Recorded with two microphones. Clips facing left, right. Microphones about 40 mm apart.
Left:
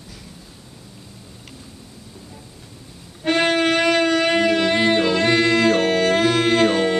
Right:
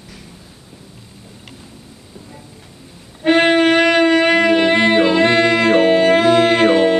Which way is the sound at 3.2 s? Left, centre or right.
Right.